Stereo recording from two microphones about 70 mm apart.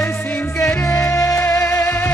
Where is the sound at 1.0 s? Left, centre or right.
Left.